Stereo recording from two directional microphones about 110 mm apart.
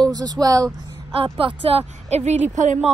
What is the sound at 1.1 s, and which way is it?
Speech, 55° right (ahead or behind).